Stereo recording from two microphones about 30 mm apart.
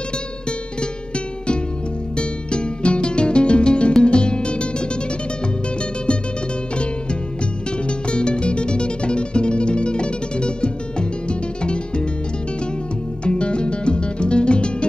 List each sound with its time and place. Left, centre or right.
0.5 s music: left
8.1 s music: left
13.2 s music: left